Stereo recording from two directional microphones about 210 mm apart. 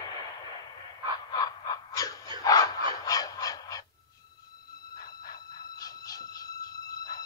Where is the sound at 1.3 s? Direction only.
20° left (ahead or behind).